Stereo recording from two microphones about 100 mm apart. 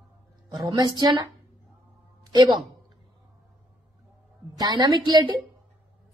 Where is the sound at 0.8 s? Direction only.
45° right (ahead or behind).